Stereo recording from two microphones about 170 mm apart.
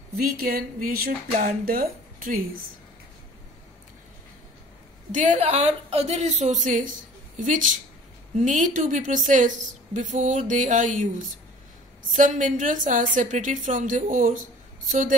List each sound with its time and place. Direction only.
0.2 s a sound: 60° right (ahead or behind)
1.7 s a woman's voice: 60° right (ahead or behind)
5.1 s a woman's voice: 45° right (ahead or behind)